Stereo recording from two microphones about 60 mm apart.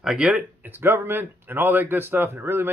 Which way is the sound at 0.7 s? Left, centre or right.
Right.